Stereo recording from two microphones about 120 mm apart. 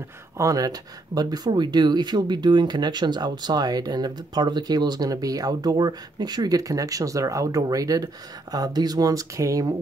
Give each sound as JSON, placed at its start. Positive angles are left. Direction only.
{"t": 0.4, "sound": "speech", "side_deg": -30}